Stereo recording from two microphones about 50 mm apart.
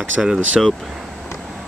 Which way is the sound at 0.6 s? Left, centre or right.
Centre.